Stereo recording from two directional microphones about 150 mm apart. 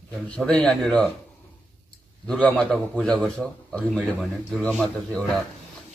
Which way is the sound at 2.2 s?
5° left (ahead or behind).